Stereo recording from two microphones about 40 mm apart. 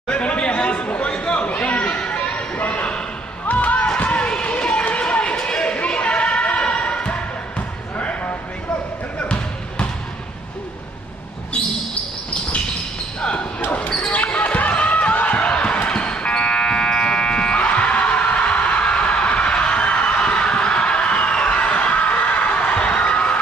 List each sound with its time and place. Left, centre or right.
0.1 s chatter: left
2.5 s a sound: left
3.4 s basketball bounce: left
3.8 s a sound: left
5.8 s basketball bounce: left
13.2 s basketball bounce: left